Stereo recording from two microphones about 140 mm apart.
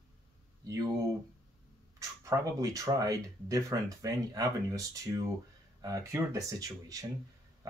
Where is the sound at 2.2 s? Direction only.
20° right (ahead or behind).